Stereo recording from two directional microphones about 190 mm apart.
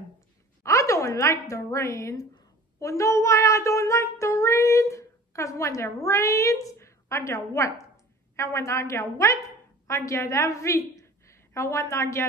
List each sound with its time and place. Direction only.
0.7 s a woman's voice: 15° left (ahead or behind)
2.8 s child singing: 15° left (ahead or behind)
9.8 s a woman's voice: 15° left (ahead or behind)